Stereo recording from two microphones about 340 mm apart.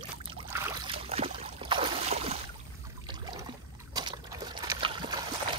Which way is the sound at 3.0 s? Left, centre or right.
Centre.